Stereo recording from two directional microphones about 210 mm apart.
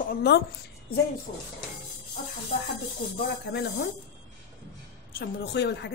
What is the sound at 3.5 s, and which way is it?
Speech, 50° left (ahead or behind).